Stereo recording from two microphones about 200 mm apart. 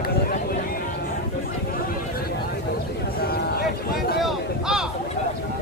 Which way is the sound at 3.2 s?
50° left (ahead or behind).